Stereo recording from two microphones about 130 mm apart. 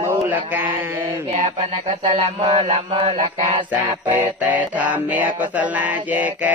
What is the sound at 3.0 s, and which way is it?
Mantra, 60° right (ahead or behind).